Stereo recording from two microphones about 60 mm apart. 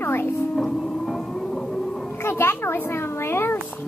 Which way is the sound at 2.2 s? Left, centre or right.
Left.